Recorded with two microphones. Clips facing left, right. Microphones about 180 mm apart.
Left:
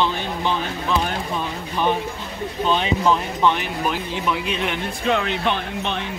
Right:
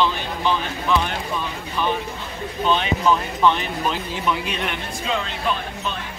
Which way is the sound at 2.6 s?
15° left (ahead or behind).